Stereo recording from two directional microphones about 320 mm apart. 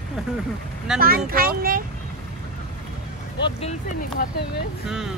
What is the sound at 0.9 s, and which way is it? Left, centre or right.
Speech, right.